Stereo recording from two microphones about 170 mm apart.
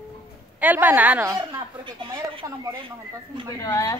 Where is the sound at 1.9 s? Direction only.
30° right (ahead or behind).